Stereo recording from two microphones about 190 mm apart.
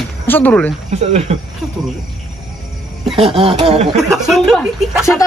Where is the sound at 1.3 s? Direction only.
35° right (ahead or behind).